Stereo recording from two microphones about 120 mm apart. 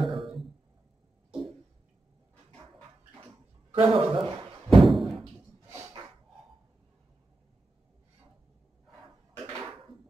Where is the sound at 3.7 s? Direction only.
45° right (ahead or behind).